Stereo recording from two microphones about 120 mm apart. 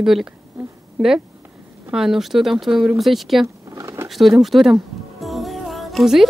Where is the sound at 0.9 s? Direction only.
5° right (ahead or behind).